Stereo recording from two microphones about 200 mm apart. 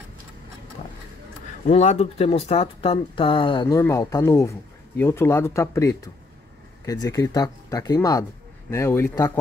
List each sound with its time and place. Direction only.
1.7 s speech: 35° left (ahead or behind)
3.6 s speech: 15° left (ahead or behind)